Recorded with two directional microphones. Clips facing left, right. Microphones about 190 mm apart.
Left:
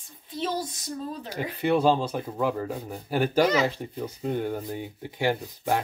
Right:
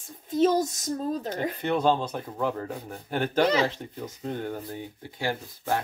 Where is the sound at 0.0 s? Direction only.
45° right (ahead or behind).